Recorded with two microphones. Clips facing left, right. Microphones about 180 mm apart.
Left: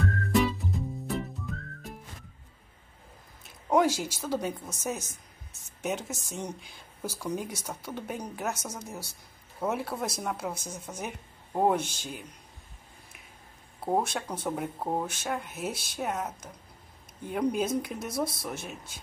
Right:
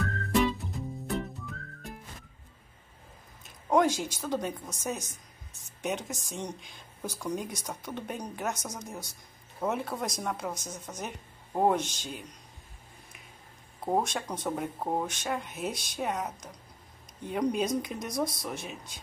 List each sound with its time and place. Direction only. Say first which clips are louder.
0.0 s music: left 1 dB; centre (ahead or behind)
3.6 s a sound: even; 5° left (ahead or behind)
4.2 s speech: left 2 dB; 5° left (ahead or behind)
13.7 s speech: left 1 dB; 5° left (ahead or behind)